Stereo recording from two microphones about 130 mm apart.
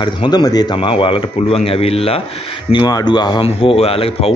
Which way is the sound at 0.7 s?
45° left (ahead or behind).